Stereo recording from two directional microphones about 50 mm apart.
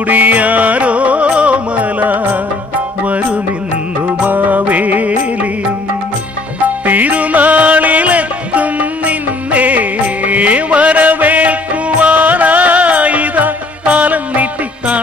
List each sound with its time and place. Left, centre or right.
0.0 s music: right
4.2 s music: right
6.9 s music: right